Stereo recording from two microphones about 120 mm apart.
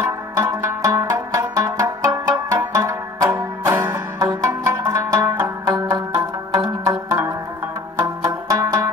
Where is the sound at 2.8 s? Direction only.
30° right (ahead or behind).